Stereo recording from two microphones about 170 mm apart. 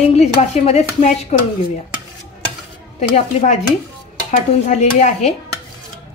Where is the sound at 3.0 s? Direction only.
40° left (ahead or behind).